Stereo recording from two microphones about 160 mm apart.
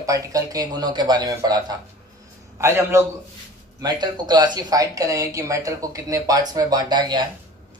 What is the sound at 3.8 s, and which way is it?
A man's voice, 25° right (ahead or behind).